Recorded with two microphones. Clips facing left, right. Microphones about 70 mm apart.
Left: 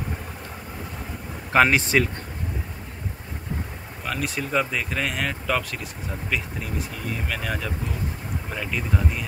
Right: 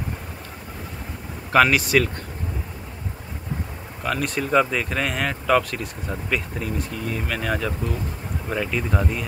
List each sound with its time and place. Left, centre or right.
1.5 s speech: left
4.0 s speech: centre